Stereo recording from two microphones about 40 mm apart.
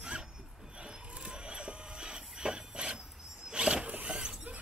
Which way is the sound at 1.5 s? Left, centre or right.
Right.